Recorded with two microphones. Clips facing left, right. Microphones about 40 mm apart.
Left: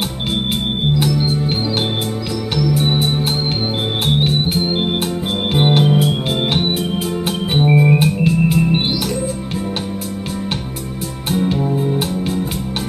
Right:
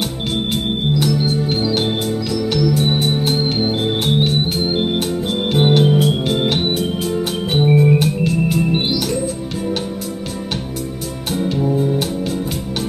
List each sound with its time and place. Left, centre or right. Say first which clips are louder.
1.2 s organ: right 1 dB; centre
4.7 s organ: right 1 dB; centre
7.5 s music: even; centre
8.3 s organ: left 2 dB; centre
11.4 s music: right 2 dB; centre